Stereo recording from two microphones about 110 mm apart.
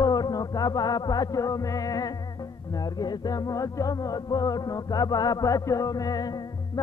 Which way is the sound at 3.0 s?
35° left (ahead or behind).